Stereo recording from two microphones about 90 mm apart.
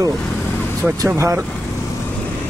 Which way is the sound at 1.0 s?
35° right (ahead or behind).